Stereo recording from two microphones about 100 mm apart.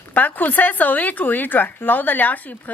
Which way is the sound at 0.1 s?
15° left (ahead or behind).